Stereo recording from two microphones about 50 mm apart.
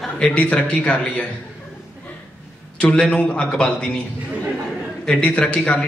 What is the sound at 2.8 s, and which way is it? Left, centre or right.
A man's voice, left.